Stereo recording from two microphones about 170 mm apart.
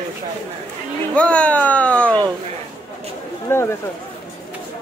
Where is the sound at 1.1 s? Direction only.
5° left (ahead or behind).